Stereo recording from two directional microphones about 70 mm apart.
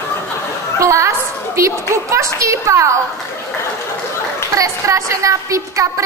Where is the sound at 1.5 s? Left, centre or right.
Right.